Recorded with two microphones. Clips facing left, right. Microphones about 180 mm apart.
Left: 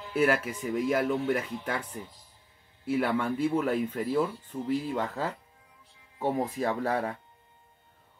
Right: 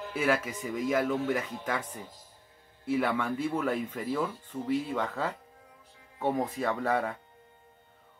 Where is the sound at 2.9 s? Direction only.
5° left (ahead or behind).